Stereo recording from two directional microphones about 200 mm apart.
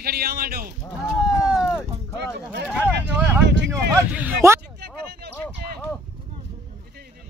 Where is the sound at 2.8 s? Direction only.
10° right (ahead or behind).